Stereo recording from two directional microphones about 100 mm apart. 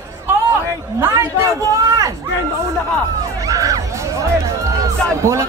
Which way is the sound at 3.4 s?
35° right (ahead or behind).